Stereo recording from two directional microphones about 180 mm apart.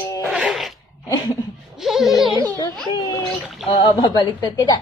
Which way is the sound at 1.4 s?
25° left (ahead or behind).